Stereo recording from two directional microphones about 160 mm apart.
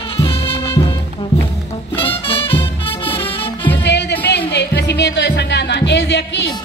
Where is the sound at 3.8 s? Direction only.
90° left.